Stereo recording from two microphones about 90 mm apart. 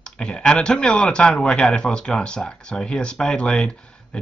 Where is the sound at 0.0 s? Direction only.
10° left (ahead or behind).